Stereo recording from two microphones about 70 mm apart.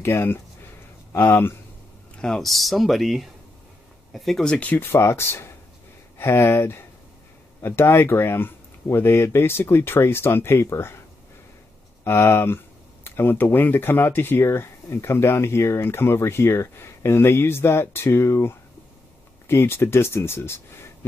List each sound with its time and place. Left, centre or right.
0.0 s speech: left
2.2 s speech: centre
4.5 s speech: left
12.0 s speech: left